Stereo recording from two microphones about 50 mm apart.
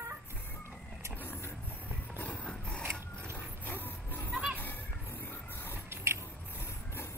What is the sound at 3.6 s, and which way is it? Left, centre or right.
Dog, left.